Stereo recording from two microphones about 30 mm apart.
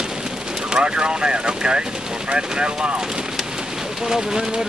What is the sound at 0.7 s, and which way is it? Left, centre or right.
Speech, right.